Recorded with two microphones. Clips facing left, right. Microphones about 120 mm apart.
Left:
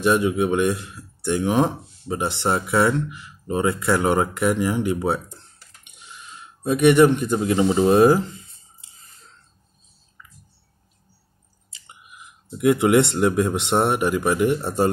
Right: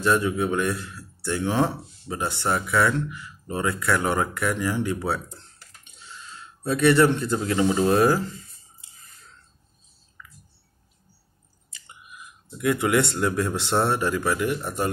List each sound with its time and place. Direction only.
0.0 s speech: 15° left (ahead or behind)
11.7 s speech: 20° left (ahead or behind)